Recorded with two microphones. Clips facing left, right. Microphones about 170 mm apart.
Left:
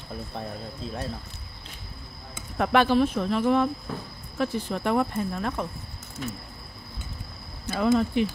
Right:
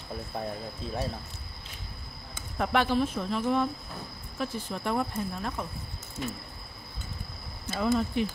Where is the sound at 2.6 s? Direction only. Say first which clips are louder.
Left 5 dB; 70° left (ahead or behind).